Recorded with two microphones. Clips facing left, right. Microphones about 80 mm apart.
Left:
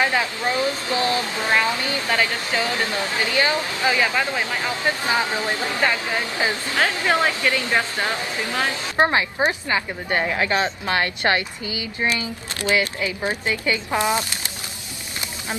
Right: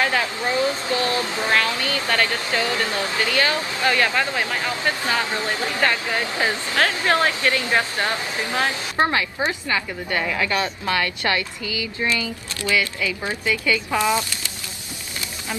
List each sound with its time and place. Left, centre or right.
0.0 s speech: centre
0.4 s speech: right
1.5 s a woman's voice: centre
7.5 s speech: centre
8.9 s a woman's voice: left